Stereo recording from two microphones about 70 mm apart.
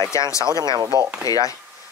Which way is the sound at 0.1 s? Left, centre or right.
Left.